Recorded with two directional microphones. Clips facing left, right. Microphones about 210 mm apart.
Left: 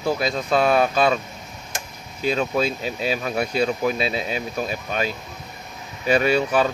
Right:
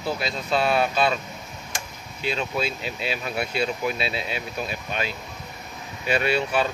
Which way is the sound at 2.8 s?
40° left (ahead or behind).